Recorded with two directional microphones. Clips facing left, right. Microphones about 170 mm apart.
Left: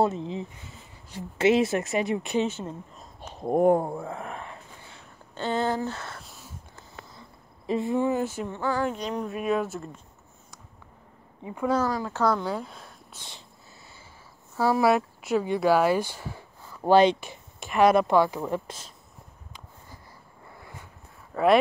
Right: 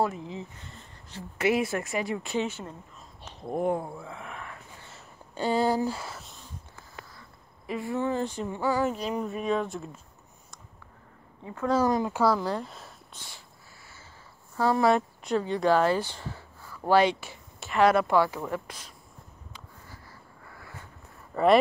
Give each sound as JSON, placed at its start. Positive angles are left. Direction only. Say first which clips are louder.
{"t": 0.0, "sound": "speech", "louder": "left 4 dB", "side_deg": 25}
{"t": 0.7, "sound": "a sound", "louder": "left 1 dB", "side_deg": 5}
{"t": 1.4, "sound": "speech", "louder": "left 4 dB", "side_deg": 25}
{"t": 3.2, "sound": "speech", "louder": "left 7 dB", "side_deg": 45}
{"t": 4.9, "sound": "a sound", "louder": "right 2 dB", "side_deg": -10}
{"t": 7.2, "sound": "a sound", "louder": "left 3 dB", "side_deg": 25}
{"t": 8.5, "sound": "speech", "louder": "right 1 dB", "side_deg": -10}
{"t": 11.4, "sound": "speech", "louder": "left 3 dB", "side_deg": 15}
{"t": 11.8, "sound": "speech", "louder": "right 2 dB", "side_deg": -15}
{"t": 14.6, "sound": "speech", "louder": "left 1 dB", "side_deg": 5}
{"t": 20.4, "sound": "a sound", "louder": "left 1 dB", "side_deg": 20}
{"t": 21.3, "sound": "speech", "louder": "even", "side_deg": 0}